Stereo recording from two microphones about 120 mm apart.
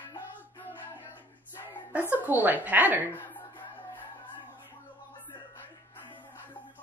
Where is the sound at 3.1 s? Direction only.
15° left (ahead or behind).